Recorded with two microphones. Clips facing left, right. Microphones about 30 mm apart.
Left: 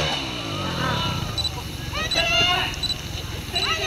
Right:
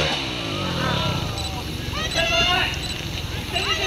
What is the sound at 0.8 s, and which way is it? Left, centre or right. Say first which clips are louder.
Vehicle: right 1 dB; centre.